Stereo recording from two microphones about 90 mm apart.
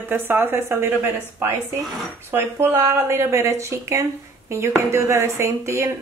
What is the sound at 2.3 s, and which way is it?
A woman's voice, 25° right (ahead or behind).